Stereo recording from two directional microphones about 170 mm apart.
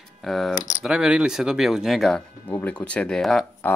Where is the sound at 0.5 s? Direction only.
45° left (ahead or behind).